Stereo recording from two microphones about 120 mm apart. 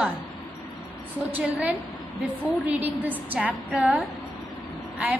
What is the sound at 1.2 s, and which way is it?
A woman's voice, 15° right (ahead or behind).